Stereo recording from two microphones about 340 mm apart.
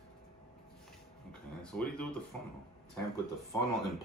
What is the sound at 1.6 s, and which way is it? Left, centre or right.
Speech, centre.